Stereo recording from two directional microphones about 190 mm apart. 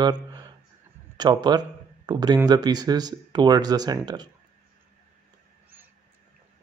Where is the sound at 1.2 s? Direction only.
20° right (ahead or behind).